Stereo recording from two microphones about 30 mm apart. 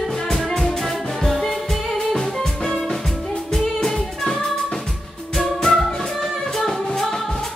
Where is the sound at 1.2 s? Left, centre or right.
Centre.